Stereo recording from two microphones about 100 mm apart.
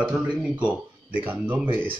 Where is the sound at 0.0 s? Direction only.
10° right (ahead or behind).